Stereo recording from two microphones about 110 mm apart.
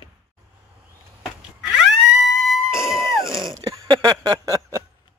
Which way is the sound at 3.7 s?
35° right (ahead or behind).